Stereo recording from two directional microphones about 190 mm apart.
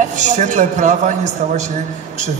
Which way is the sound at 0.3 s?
40° right (ahead or behind).